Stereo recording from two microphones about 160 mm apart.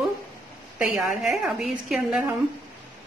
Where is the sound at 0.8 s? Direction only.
5° right (ahead or behind).